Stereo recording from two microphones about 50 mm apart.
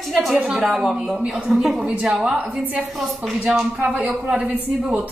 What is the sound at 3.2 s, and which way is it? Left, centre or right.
Speech, centre.